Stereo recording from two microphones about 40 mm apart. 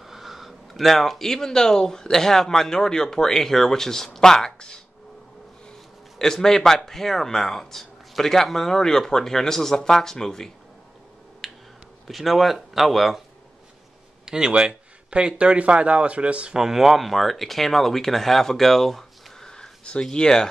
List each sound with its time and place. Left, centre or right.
0.0 s speech: centre
11.4 s a sound: centre
12.1 s speech: centre
14.2 s speech: centre
16.5 s speech: centre